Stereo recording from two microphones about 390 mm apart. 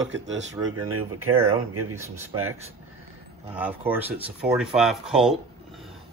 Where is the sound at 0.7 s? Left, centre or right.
Right.